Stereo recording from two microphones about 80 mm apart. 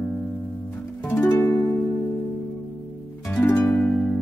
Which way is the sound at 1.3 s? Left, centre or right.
Left.